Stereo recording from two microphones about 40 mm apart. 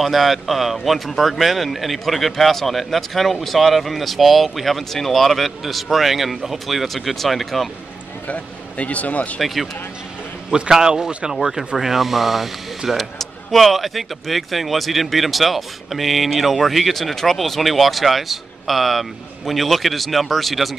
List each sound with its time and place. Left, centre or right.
0.0 s speech: centre
8.3 s speech: left
9.4 s speech: centre
10.5 s a man's voice: centre